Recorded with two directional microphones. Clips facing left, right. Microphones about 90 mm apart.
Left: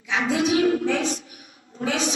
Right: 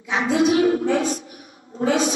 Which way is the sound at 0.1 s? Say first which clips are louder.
Right 3 dB; 35° right (ahead or behind).